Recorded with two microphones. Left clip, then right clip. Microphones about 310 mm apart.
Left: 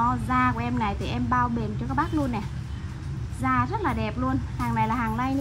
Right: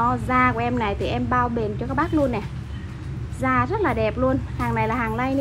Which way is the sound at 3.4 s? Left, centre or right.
Centre.